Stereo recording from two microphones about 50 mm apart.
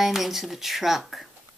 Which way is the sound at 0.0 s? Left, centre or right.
Centre.